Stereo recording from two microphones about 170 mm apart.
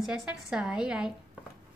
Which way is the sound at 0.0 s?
5° right (ahead or behind).